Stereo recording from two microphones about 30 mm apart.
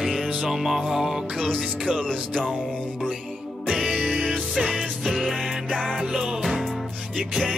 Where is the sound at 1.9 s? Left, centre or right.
Left.